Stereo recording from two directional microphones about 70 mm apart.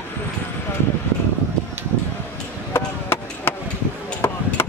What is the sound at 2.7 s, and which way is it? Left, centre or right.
Chop, left.